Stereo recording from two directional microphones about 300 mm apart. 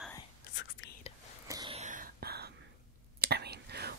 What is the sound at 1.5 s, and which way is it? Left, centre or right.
Whispering, centre.